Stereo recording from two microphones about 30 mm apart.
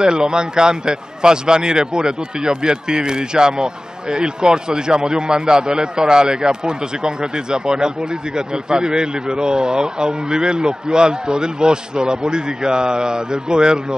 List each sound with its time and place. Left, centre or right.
0.3 s a man's voice: right